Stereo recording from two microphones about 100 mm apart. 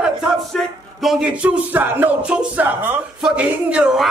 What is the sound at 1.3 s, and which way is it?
Speech, 15° right (ahead or behind).